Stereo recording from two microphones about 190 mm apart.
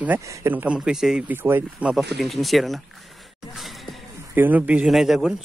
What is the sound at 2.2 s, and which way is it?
Speech, centre (ahead or behind).